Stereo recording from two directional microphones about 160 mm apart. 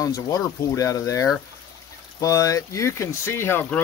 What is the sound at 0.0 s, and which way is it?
Speech, 20° left (ahead or behind).